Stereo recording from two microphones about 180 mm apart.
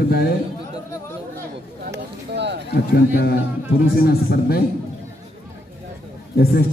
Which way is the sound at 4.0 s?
60° left (ahead or behind).